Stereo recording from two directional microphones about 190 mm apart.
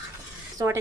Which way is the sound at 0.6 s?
20° right (ahead or behind).